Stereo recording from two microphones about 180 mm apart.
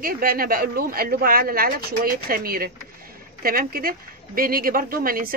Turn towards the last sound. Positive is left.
turn(degrees=-55)  # may be behind; listen again after turning